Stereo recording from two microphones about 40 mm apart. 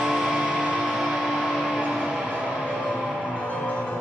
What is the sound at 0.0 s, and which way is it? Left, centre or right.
Music, centre.